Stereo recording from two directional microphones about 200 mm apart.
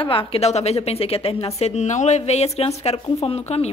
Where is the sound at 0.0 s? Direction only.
25° left (ahead or behind).